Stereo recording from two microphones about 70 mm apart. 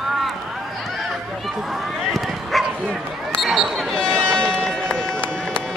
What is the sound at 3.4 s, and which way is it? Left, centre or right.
Speech, centre.